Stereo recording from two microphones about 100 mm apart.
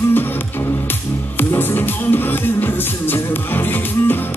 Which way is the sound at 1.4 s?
20° left (ahead or behind).